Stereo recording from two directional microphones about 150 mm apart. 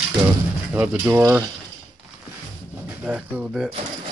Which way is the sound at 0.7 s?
10° right (ahead or behind).